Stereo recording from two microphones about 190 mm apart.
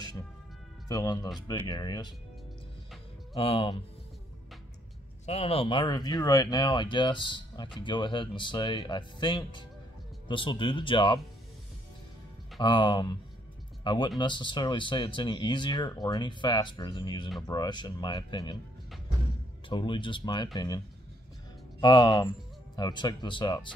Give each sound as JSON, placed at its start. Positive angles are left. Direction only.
{"t": 0.8, "sound": "speech", "side_deg": 20}
{"t": 3.3, "sound": "speech", "side_deg": 30}
{"t": 5.2, "sound": "speech", "side_deg": 35}
{"t": 12.5, "sound": "speech", "side_deg": 25}
{"t": 19.7, "sound": "speech", "side_deg": 25}